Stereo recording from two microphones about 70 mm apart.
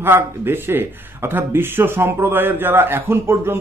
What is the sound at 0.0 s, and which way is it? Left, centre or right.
Speech, right.